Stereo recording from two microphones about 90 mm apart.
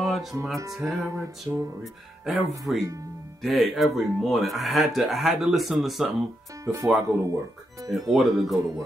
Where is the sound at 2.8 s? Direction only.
40° right (ahead or behind).